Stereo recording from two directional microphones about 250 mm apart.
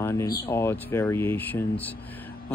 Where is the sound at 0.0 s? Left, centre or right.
Centre.